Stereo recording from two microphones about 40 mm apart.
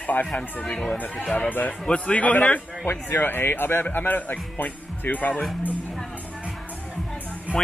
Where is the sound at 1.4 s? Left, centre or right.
Left.